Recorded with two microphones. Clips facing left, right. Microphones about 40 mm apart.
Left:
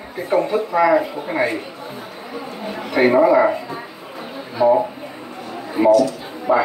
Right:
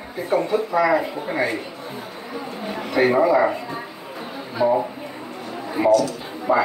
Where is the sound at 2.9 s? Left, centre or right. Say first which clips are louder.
Left 3 dB; centre.